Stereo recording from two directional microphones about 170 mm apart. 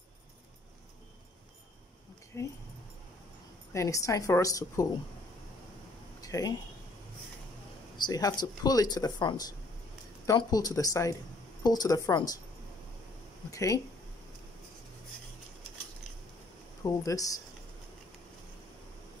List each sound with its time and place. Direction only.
2.3 s speech: 15° left (ahead or behind)
3.7 s speech: 20° left (ahead or behind)
6.2 s a sound: 20° left (ahead or behind)
8.0 s speech: 20° left (ahead or behind)
13.5 s speech: 20° left (ahead or behind)
16.8 s speech: 20° left (ahead or behind)